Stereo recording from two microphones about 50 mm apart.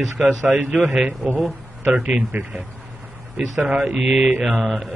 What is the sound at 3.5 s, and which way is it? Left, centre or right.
Speech, right.